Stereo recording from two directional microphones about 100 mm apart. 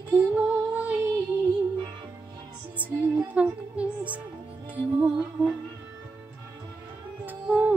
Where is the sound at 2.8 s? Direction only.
15° right (ahead or behind).